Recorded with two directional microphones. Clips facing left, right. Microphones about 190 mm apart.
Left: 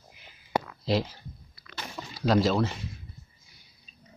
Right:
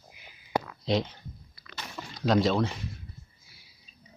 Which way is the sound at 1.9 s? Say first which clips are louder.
Left 1 dB; 5° left (ahead or behind).